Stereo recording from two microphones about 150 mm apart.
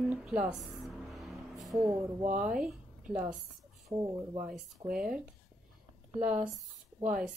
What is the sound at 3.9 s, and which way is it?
Speech, 30° right (ahead or behind).